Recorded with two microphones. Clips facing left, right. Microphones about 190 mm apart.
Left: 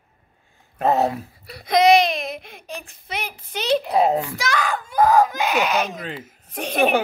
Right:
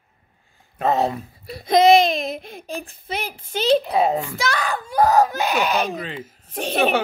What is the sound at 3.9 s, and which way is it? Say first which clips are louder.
Speech: left 1 dB; 5° left (ahead or behind).